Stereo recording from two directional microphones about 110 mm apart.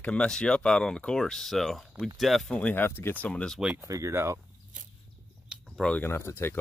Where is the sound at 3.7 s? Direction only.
30° right (ahead or behind).